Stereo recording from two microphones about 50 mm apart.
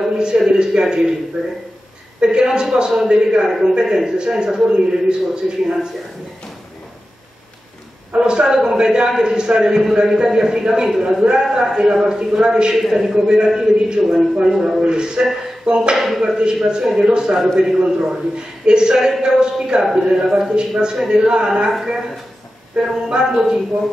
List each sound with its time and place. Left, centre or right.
0.1 s a man's voice: centre
8.1 s a man's voice: centre
16.0 s a man's voice: centre